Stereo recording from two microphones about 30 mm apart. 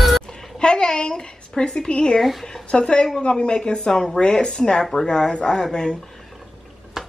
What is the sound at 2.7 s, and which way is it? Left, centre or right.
Speech, left.